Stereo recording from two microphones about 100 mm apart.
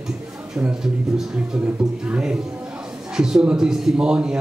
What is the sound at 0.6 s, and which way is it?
Speech, 10° right (ahead or behind).